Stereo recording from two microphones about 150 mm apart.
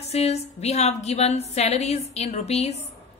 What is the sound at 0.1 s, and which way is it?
A woman's voice, 45° left (ahead or behind).